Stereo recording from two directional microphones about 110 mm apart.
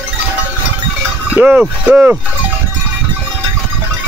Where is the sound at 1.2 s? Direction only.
15° right (ahead or behind).